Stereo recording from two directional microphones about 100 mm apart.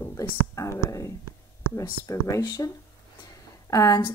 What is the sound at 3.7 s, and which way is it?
Speech, 35° left (ahead or behind).